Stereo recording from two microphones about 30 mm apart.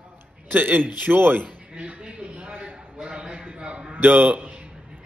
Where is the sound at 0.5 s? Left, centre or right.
Right.